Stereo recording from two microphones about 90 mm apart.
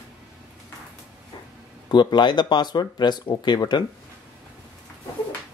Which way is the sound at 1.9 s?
55° left (ahead or behind).